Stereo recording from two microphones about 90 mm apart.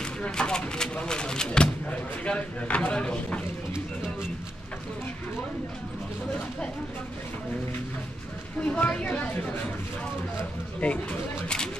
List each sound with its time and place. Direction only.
0.0 s speech: 10° left (ahead or behind)
8.6 s speech: 15° left (ahead or behind)
10.8 s speech: 15° left (ahead or behind)